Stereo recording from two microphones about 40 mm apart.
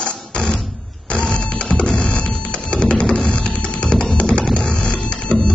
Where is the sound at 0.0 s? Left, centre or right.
Left.